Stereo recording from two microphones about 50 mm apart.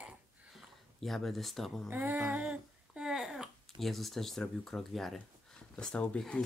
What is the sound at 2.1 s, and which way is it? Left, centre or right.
Humming, right.